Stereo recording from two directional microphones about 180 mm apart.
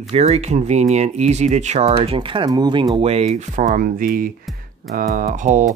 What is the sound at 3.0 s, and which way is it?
Speech, 35° right (ahead or behind).